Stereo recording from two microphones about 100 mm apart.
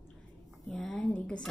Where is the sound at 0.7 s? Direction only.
10° left (ahead or behind).